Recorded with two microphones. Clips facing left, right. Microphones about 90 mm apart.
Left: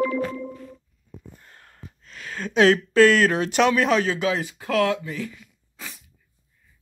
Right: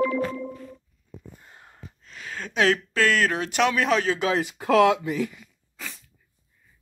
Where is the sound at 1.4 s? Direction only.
15° right (ahead or behind).